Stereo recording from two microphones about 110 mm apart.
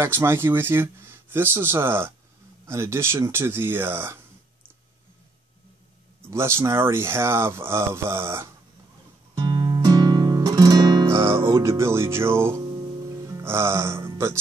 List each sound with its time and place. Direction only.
0.0 s speech: 20° right (ahead or behind)
6.3 s speech: 25° right (ahead or behind)
9.4 s guitar: 40° right (ahead or behind)
11.1 s speech: 25° right (ahead or behind)